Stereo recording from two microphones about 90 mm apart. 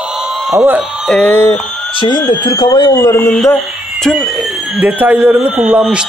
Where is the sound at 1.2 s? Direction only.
20° left (ahead or behind).